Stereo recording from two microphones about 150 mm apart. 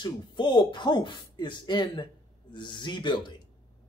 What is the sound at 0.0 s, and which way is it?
Speech, 30° left (ahead or behind).